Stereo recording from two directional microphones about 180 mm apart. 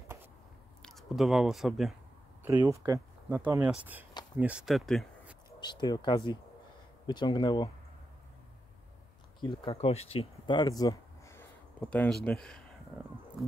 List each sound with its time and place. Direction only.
0.8 s speech: centre (ahead or behind)
2.4 s speech: 15° right (ahead or behind)
5.6 s speech: 25° left (ahead or behind)
9.4 s speech: 30° left (ahead or behind)
11.8 s speech: 5° left (ahead or behind)